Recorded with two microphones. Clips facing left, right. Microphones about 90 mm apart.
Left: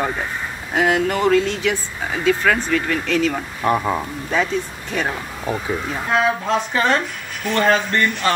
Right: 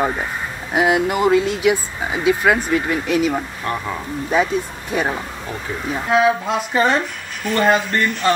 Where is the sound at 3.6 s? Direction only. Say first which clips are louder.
Left 5 dB; 25° left (ahead or behind).